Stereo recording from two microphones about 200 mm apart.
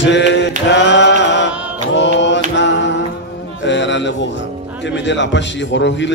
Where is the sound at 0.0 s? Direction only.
65° left (ahead or behind).